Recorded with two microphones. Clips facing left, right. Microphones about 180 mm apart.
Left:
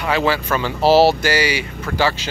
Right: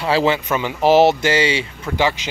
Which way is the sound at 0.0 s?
25° right (ahead or behind).